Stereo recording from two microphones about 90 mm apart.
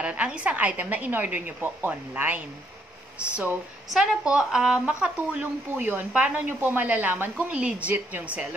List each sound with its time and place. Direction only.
0.0 s a woman's voice: 15° right (ahead or behind)
3.9 s a woman's voice: 10° right (ahead or behind)